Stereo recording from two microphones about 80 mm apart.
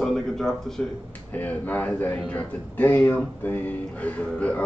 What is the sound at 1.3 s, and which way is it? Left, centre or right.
A man's voice, left.